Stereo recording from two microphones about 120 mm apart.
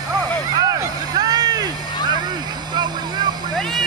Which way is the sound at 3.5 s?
Centre (ahead or behind).